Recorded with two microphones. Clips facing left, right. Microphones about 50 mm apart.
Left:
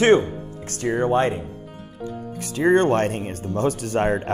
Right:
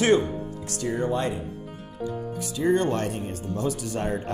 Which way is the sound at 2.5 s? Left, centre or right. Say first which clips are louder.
Left 6 dB; left.